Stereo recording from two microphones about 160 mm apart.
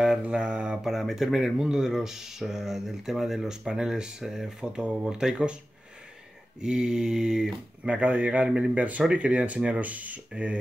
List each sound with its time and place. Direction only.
0.0 s speech: 5° right (ahead or behind)
6.6 s speech: 5° right (ahead or behind)